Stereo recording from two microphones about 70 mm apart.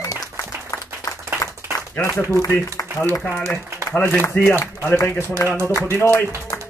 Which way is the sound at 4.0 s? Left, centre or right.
Left.